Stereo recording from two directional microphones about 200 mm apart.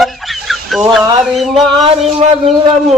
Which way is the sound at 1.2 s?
Centre (ahead or behind).